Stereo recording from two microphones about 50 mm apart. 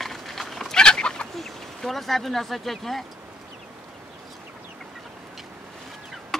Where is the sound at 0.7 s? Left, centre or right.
Centre.